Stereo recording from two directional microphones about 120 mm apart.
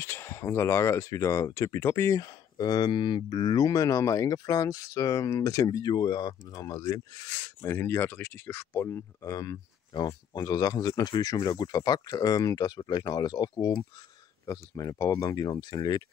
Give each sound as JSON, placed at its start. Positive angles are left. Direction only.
{"t": 0.0, "sound": "speech", "side_deg": 20}